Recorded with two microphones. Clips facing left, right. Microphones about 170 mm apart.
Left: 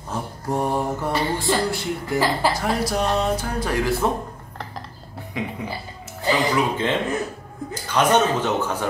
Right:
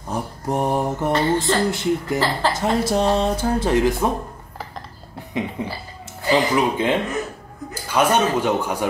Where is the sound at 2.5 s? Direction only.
25° right (ahead or behind).